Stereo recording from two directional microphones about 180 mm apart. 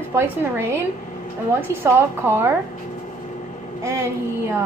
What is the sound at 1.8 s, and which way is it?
Speech, 15° right (ahead or behind).